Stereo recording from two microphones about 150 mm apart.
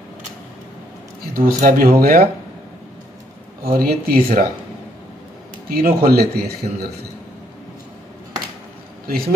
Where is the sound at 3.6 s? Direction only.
85° right.